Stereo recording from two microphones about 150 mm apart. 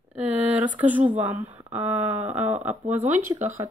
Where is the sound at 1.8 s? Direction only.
10° right (ahead or behind).